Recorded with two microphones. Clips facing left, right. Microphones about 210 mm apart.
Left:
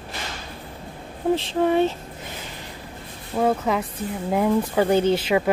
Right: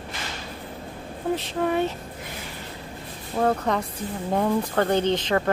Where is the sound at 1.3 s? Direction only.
30° left (ahead or behind).